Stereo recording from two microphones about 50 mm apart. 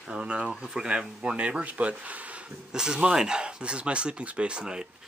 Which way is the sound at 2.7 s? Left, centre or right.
Centre.